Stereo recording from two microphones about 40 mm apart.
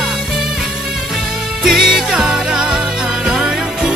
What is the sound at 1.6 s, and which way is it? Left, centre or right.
Music, centre.